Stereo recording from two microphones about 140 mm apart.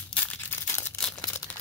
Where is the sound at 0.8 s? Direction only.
15° left (ahead or behind).